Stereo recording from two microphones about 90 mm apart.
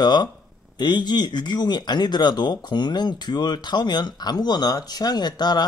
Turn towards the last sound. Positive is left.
turn(degrees=50)  # may be behind; listen again after turning